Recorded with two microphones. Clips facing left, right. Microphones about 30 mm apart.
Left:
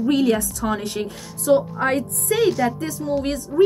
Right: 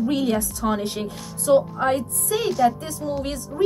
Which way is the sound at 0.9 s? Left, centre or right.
Left.